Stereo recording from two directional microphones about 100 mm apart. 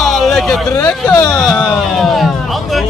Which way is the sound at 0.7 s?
15° left (ahead or behind).